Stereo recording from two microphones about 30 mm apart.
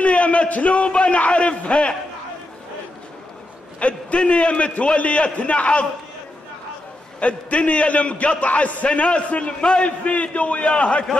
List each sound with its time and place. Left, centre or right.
0.0 s a sound: left
0.7 s speech: left
3.8 s a man's voice: left
7.2 s a man's voice: left
9.8 s a man's voice: left